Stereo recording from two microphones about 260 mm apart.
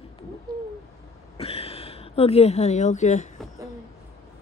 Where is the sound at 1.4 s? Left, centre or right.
Left.